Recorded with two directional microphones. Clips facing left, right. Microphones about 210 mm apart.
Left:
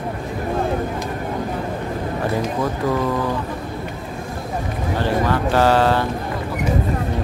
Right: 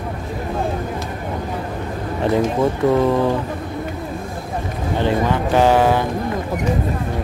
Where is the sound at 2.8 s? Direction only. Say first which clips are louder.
Right 5 dB; 25° right (ahead or behind).